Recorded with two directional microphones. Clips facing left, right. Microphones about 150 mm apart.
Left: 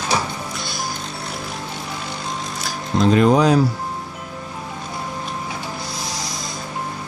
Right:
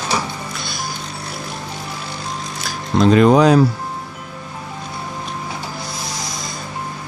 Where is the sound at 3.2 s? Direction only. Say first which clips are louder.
Right 3 dB; 70° right (ahead or behind).